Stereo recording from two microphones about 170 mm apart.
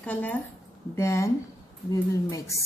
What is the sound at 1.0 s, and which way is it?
Speech, 15° left (ahead or behind).